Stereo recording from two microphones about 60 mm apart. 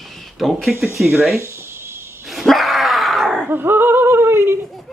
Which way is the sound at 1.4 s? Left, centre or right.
Right.